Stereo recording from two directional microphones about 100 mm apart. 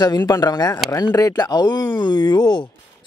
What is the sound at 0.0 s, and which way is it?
Speech, 45° left (ahead or behind).